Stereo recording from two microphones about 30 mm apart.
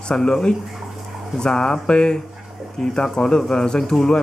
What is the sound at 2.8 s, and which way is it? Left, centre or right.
Speech, centre.